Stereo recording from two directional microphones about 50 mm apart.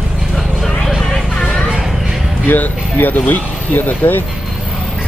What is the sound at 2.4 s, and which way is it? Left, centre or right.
Speech, left.